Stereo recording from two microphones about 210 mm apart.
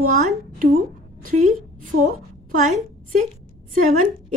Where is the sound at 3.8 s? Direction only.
35° right (ahead or behind).